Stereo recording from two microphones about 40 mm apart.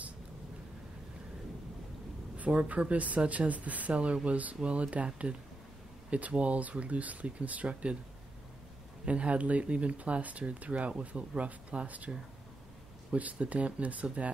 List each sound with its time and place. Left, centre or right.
2.3 s a sound: right
2.7 s speech: right
9.0 s speech: right